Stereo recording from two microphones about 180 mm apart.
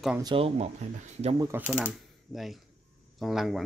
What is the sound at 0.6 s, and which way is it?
Speech, 40° right (ahead or behind).